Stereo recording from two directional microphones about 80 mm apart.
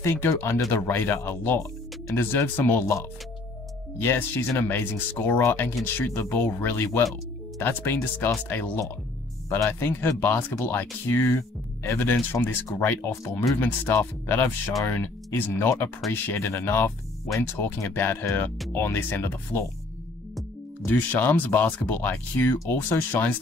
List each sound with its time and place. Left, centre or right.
0.0 s speech: left
11.1 s speech: left
20.8 s speech: left